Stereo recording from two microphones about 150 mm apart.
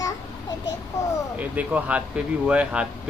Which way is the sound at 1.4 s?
10° right (ahead or behind).